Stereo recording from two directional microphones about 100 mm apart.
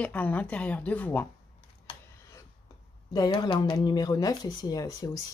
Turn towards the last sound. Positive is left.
turn(degrees=40)  # may be behind; listen again after turning